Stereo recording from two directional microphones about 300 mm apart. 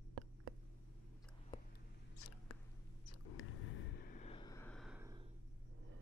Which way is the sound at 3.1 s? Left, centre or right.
Left.